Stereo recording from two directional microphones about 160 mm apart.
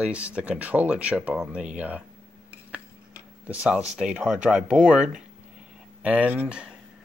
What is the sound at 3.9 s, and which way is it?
Speech, 5° right (ahead or behind).